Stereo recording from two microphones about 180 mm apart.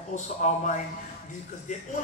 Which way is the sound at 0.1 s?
40° left (ahead or behind).